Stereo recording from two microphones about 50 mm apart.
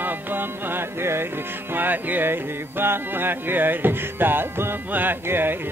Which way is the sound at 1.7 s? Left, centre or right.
Right.